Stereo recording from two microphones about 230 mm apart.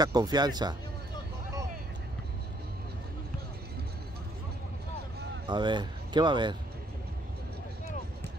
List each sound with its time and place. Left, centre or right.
0.0 s speech: centre
5.5 s speech: centre